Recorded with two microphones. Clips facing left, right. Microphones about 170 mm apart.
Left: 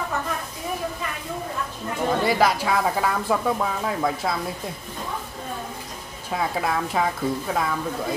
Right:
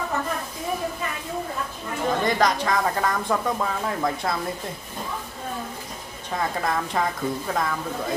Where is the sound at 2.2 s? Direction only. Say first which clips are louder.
Left 1 dB; 5° left (ahead or behind).